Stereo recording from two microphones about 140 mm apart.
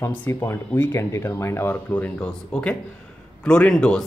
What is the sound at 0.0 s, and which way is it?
Speech, 15° left (ahead or behind).